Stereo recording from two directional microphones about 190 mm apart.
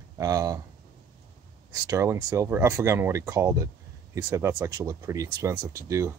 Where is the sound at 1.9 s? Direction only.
15° right (ahead or behind).